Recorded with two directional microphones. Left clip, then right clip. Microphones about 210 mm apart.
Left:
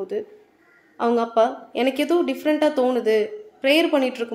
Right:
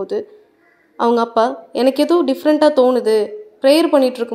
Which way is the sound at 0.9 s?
25° right (ahead or behind).